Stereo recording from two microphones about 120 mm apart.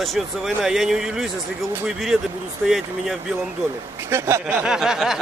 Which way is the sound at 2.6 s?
5° right (ahead or behind).